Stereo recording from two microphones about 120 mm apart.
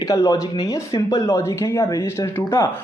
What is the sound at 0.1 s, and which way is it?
A man's voice, 30° left (ahead or behind).